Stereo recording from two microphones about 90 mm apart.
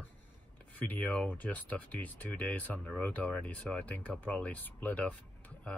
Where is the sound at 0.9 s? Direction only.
15° left (ahead or behind).